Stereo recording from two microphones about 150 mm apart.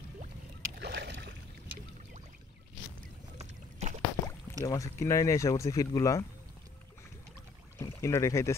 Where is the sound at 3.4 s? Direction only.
50° right (ahead or behind).